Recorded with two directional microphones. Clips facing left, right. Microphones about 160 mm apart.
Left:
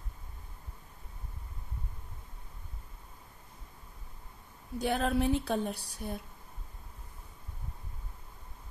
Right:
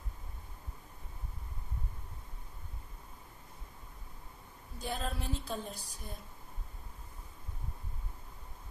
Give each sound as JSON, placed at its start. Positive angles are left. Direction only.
{"t": 4.7, "sound": "a woman's voice", "side_deg": 70}